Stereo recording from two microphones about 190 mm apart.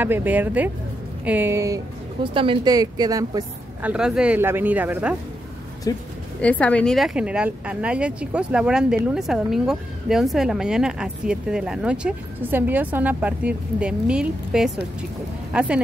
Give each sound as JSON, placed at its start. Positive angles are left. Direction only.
{"t": 0.0, "sound": "speech", "side_deg": -10}
{"t": 2.2, "sound": "a woman's voice", "side_deg": -25}
{"t": 3.8, "sound": "speech", "side_deg": -5}
{"t": 5.9, "sound": "speech", "side_deg": 20}
{"t": 6.4, "sound": "a woman's voice", "side_deg": 5}